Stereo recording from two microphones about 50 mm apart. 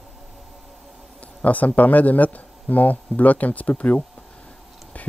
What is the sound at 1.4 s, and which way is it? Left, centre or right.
Speech, left.